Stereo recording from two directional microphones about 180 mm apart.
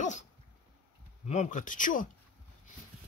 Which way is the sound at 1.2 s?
40° left (ahead or behind).